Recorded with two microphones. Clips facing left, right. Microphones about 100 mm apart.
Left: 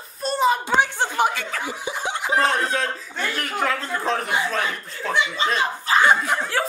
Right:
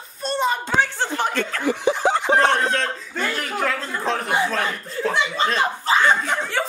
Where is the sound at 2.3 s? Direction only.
70° right (ahead or behind).